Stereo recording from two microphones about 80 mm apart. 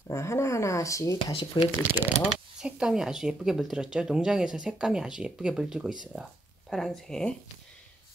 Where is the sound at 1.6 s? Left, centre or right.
Left.